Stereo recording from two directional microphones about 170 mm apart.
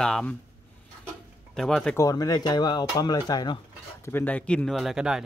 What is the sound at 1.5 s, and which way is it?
Speech, 5° left (ahead or behind).